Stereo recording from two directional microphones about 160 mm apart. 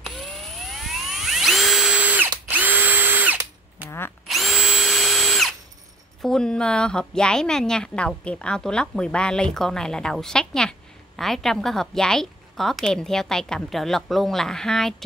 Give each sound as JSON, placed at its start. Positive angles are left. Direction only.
{"t": 0.0, "sound": "vehicle", "side_deg": 0}
{"t": 0.7, "sound": "drill", "side_deg": 0}
{"t": 6.2, "sound": "a woman's voice", "side_deg": 5}